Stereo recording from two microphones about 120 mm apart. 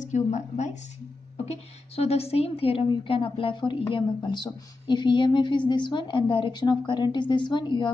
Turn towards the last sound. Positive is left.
turn(degrees=40)  # may be behind; listen again after turning